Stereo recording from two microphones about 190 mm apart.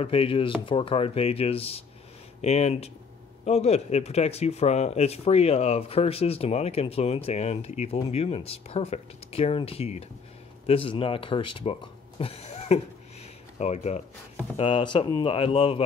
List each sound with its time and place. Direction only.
0.0 s speech: 30° left (ahead or behind)